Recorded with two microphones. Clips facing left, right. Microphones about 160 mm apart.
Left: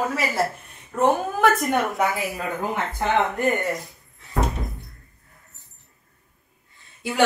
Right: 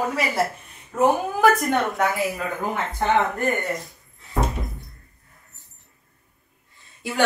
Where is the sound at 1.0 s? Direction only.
Centre (ahead or behind).